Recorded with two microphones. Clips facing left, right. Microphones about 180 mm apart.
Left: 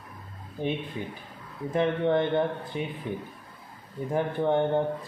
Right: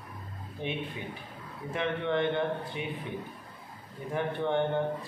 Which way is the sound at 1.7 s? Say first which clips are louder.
Left 6 dB; 40° left (ahead or behind).